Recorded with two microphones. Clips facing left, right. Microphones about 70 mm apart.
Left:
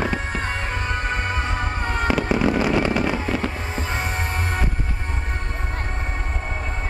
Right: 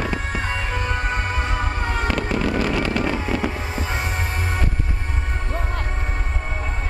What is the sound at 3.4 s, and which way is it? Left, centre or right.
Music, centre.